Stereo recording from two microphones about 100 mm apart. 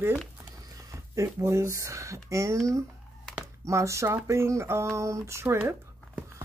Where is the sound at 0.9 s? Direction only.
30° right (ahead or behind).